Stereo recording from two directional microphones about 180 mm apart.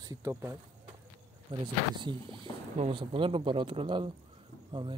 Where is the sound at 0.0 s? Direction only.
20° right (ahead or behind).